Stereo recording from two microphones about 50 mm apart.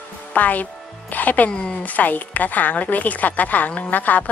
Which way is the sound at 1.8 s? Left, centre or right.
Left.